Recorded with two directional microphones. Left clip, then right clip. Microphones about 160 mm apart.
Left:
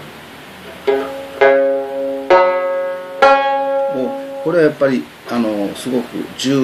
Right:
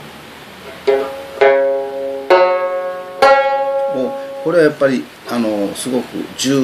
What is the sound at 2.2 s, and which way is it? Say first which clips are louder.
Banjo: even; centre (ahead or behind).